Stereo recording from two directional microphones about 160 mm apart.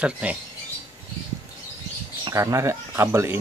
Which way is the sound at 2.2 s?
20° right (ahead or behind).